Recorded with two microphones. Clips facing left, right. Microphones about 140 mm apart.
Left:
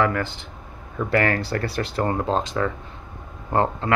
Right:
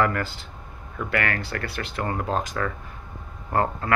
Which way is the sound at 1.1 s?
35° left (ahead or behind).